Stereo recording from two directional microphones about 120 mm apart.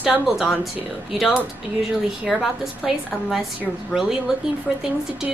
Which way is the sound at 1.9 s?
5° right (ahead or behind).